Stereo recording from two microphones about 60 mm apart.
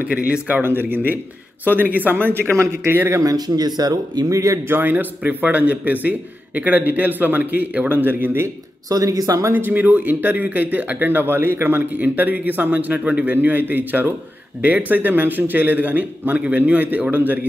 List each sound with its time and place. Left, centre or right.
0.1 s speech: right
0.6 s speech: right
2.5 s a man's voice: right
2.9 s speech: right
3.2 s speech: right
4.6 s speech: right
8.8 s speech: right
9.5 s speech: right